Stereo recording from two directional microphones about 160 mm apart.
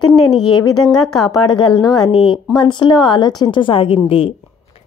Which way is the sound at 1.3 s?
30° left (ahead or behind).